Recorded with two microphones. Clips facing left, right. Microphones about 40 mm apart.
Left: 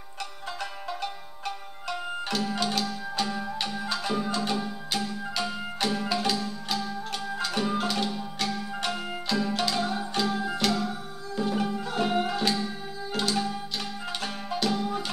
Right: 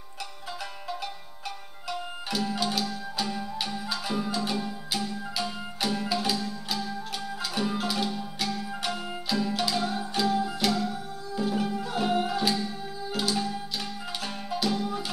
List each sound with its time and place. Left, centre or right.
0.8 s music: centre